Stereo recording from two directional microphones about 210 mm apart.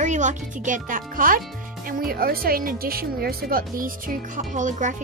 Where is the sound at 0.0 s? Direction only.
35° right (ahead or behind).